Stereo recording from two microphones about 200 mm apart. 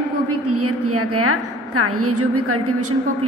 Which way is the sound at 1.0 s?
90° right.